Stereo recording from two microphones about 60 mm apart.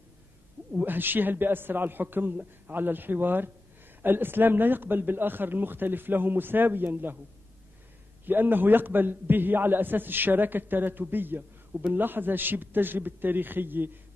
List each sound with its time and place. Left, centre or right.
0.7 s a man's voice: right
8.3 s a man's voice: right